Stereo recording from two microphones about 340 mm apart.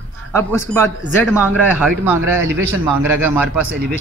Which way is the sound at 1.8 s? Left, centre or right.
Centre.